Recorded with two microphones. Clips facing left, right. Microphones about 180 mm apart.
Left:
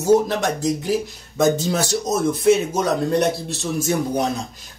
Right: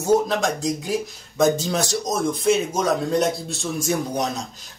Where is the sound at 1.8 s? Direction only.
5° left (ahead or behind).